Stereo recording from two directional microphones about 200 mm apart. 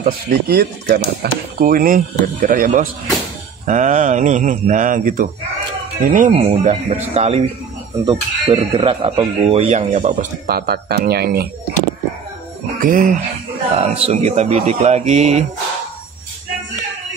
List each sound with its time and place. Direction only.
0.0 s speech: 50° right (ahead or behind); by 10.1 s 35° right (ahead or behind)
10.4 s speech: 50° right (ahead or behind)
12.8 s speech: 45° right (ahead or behind)
13.7 s speech: 30° right (ahead or behind)